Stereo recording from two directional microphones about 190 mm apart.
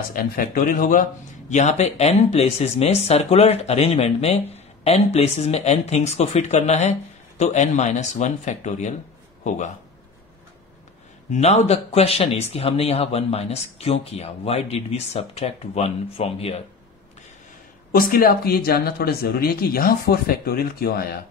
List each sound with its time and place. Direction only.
0.1 s speech: 45° left (ahead or behind)
11.3 s speech: 35° left (ahead or behind)
17.9 s speech: 50° left (ahead or behind)